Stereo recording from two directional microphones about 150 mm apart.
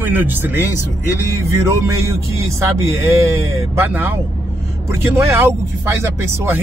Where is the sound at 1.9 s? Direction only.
20° right (ahead or behind).